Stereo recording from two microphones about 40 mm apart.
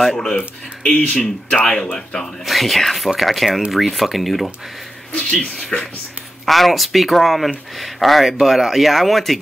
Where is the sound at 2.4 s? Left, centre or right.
Centre.